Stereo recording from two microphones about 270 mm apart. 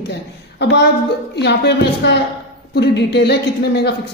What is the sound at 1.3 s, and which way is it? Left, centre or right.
A man's voice, left.